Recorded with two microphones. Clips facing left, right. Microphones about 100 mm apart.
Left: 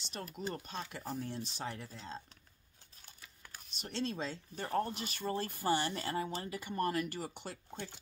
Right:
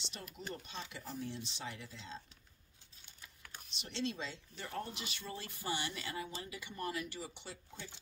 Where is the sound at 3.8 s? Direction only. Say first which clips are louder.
Left 2 dB; 45° left (ahead or behind).